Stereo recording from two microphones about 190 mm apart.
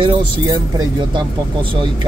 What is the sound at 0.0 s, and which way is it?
Speech, 25° right (ahead or behind).